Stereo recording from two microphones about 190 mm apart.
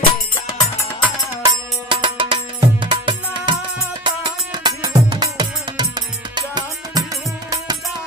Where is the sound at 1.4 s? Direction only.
25° right (ahead or behind).